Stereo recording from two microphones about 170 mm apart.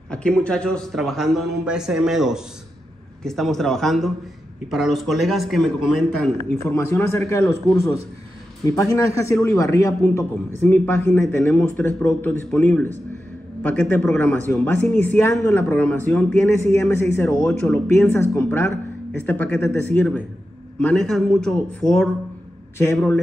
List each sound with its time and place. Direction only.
0.1 s a man's voice: 5° left (ahead or behind)
6.6 s a man's voice: 15° left (ahead or behind)
8.6 s a man's voice: 20° left (ahead or behind)
17.3 s a man's voice: 5° left (ahead or behind)
22.8 s a man's voice: 15° left (ahead or behind)